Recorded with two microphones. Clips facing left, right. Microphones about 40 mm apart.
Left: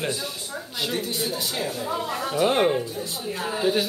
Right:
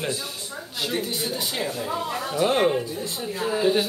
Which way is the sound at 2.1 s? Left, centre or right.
Centre.